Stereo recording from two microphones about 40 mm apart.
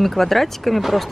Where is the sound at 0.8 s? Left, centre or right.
Centre.